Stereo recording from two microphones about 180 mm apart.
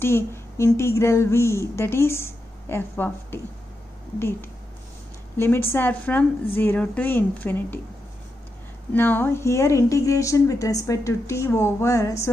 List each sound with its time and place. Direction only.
0.0 s a woman's voice: 15° left (ahead or behind)
5.4 s a woman's voice: 15° left (ahead or behind)
8.9 s a woman's voice: 10° left (ahead or behind)